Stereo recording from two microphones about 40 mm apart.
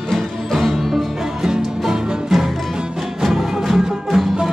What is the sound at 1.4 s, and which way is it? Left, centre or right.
Music, centre.